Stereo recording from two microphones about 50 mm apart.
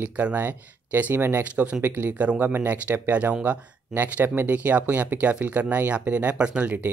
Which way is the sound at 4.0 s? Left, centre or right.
Right.